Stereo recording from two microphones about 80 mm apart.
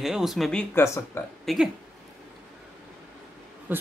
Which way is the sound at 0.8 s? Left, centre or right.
Left.